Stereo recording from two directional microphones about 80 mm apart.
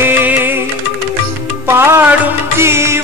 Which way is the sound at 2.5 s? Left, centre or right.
Right.